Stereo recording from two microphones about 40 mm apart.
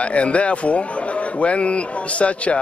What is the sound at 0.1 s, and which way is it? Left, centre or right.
A man's voice, left.